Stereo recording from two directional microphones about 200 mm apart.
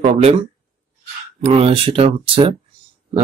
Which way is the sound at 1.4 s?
30° right (ahead or behind).